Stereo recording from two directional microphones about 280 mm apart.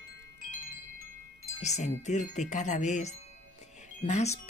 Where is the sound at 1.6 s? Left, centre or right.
Left.